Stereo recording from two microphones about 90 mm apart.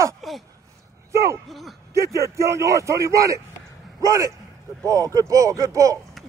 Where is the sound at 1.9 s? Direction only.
35° right (ahead or behind).